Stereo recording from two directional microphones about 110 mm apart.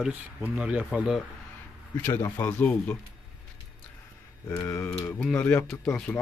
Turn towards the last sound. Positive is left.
turn(degrees=10)  # may be behind; listen again after turning